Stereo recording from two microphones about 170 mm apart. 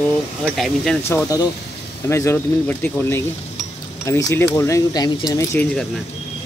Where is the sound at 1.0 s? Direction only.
15° left (ahead or behind).